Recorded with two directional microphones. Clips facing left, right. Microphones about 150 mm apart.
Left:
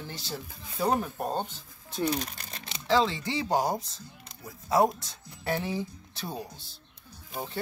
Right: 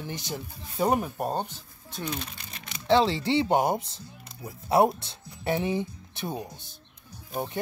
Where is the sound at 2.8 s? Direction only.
30° right (ahead or behind).